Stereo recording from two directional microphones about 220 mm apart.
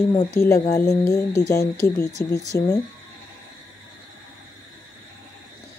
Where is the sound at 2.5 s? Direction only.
45° left (ahead or behind).